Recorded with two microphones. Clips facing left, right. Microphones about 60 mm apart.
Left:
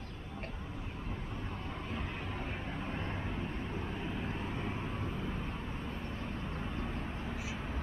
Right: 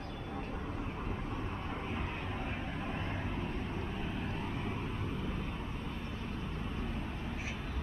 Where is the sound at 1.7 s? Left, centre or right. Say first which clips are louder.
Even; centre.